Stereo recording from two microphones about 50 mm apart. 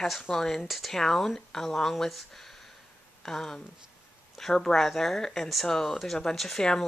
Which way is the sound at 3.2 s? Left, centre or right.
Centre.